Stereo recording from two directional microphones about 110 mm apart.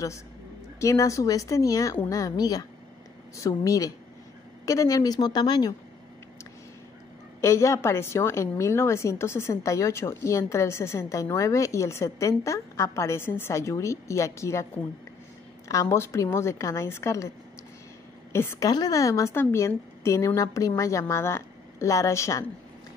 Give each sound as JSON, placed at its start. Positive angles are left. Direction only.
{"t": 0.7, "sound": "a woman's voice", "side_deg": 30}
{"t": 7.4, "sound": "a woman's voice", "side_deg": 25}
{"t": 15.7, "sound": "a woman's voice", "side_deg": 30}
{"t": 18.3, "sound": "a woman's voice", "side_deg": 25}
{"t": 18.7, "sound": "a woman's voice", "side_deg": 35}